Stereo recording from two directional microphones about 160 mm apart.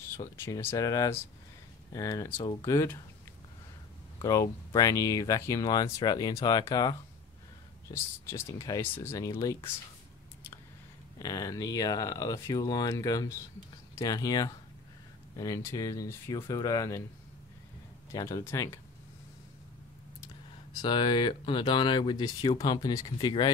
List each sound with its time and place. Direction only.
0.2 s speech: 15° left (ahead or behind)
4.2 s speech: 20° left (ahead or behind)
11.1 s speech: 20° left (ahead or behind)
18.1 s speech: 20° left (ahead or behind)
20.7 s speech: 30° left (ahead or behind)